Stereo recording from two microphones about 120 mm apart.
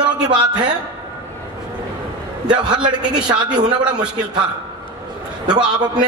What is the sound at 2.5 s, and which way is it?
A man's voice, 40° right (ahead or behind).